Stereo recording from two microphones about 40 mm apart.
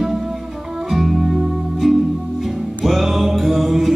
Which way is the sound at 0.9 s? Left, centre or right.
Centre.